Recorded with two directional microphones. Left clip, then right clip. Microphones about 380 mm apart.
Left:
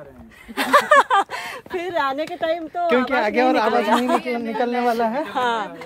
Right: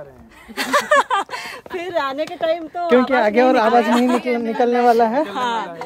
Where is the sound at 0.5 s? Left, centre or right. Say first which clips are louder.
Left 2 dB; centre.